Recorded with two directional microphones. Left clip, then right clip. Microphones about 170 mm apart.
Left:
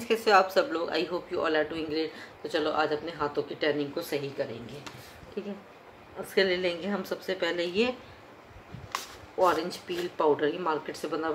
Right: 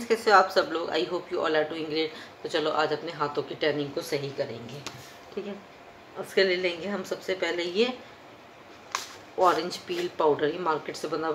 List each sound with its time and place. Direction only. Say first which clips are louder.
0.1 s speech: right 2 dB; 5° left (ahead or behind)
5.4 s speech: right 2 dB; centre (ahead or behind)
6.3 s a woman's voice: right 2 dB; 10° left (ahead or behind)
9.4 s speech: right 2 dB; centre (ahead or behind)